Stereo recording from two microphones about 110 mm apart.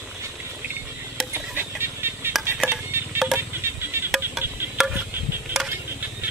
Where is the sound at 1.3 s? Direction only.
20° right (ahead or behind).